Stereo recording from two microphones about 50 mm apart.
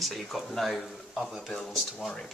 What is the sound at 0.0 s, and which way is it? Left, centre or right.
Speech, centre.